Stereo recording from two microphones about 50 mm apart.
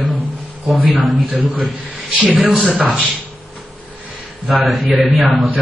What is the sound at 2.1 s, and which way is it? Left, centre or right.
Speech, centre.